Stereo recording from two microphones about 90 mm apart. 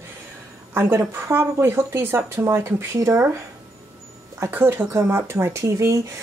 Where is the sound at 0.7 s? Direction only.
25° right (ahead or behind).